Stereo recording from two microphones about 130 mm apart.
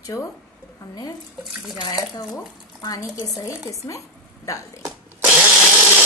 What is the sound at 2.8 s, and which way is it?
Speech, 30° left (ahead or behind).